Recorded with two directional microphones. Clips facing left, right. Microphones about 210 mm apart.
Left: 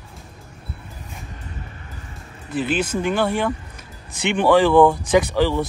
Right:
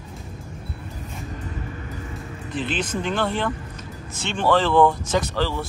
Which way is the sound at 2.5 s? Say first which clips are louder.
Left 5 dB; 5° left (ahead or behind).